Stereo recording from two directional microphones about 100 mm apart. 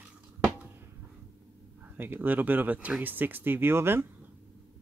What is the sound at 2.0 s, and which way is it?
Speech, 20° right (ahead or behind).